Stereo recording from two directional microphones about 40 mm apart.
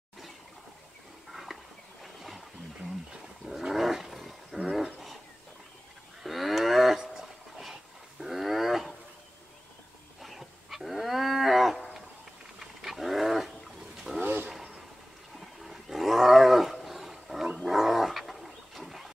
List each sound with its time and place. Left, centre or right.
1.3 s a sound: centre
3.4 s roaring cats: centre
6.2 s moo: centre
7.0 s a sound: centre
7.6 s wild animals: centre
10.2 s wild animals: centre
12.5 s roaring cats: centre
14.2 s a sound: right
15.3 s roaring cats: centre
17.6 s dog: centre